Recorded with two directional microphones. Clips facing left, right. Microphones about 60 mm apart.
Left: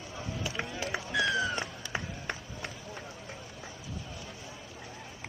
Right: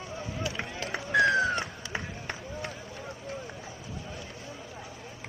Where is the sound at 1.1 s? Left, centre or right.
Right.